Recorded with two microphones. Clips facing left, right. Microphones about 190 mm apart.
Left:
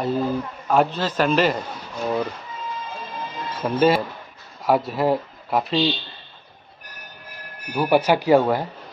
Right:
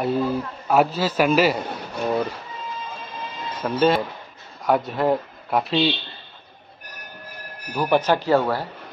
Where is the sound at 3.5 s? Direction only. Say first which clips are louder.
Left 1 dB; 5° left (ahead or behind).